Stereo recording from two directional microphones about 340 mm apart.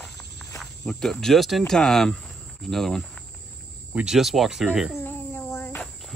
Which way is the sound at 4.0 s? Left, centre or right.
Centre.